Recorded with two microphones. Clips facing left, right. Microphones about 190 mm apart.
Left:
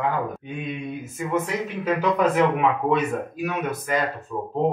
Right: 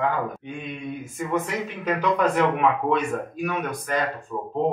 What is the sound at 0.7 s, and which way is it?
Speech, centre (ahead or behind).